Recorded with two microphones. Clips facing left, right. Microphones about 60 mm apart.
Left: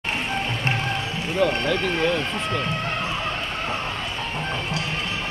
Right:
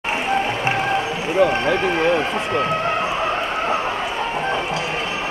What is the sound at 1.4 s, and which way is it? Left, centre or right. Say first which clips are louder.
Speech: right 4 dB; centre.